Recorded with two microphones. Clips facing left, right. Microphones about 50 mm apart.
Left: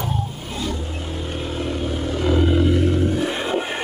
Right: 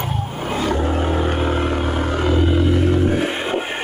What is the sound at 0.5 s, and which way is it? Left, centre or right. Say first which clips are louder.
Vehicle: right 9 dB; right.